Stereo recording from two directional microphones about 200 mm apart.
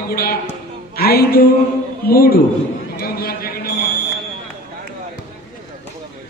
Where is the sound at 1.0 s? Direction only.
50° left (ahead or behind).